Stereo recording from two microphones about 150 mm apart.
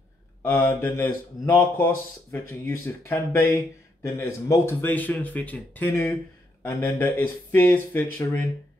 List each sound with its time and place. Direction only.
0.4 s speech: 15° left (ahead or behind)